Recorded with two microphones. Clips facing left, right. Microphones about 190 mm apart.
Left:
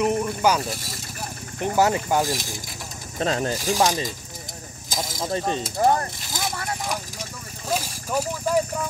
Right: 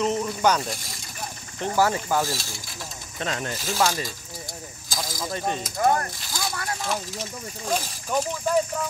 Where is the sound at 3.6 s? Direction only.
15° left (ahead or behind).